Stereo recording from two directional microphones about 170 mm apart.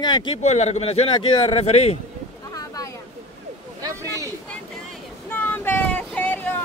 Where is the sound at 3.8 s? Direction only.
20° right (ahead or behind).